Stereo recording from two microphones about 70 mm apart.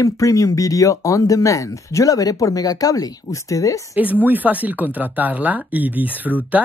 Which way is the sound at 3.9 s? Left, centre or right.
Right.